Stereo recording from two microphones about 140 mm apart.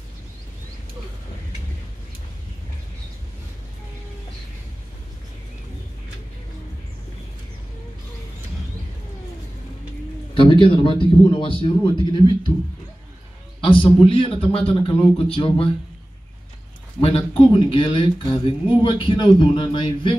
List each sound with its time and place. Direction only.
10.3 s a man's voice: 35° left (ahead or behind)
13.6 s a man's voice: 35° left (ahead or behind)
17.0 s a man's voice: 45° left (ahead or behind)